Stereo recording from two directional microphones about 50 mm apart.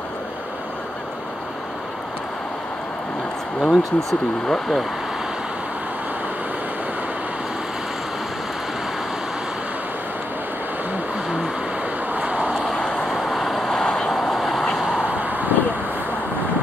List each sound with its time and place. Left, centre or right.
3.6 s speech: centre
12.3 s vehicle: centre
12.5 s vehicle: centre
15.0 s vehicle: right